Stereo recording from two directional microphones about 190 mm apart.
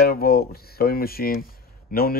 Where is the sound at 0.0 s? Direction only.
55° left (ahead or behind).